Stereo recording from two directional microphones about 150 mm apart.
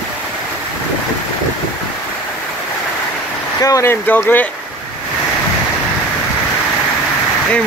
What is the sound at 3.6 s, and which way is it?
Speech, 20° left (ahead or behind).